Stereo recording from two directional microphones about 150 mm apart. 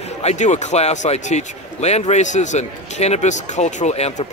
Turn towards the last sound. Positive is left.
turn(degrees=45)  # may be behind; listen again after turning